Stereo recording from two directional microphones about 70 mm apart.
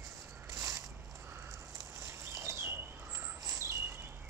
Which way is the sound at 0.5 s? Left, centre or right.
Right.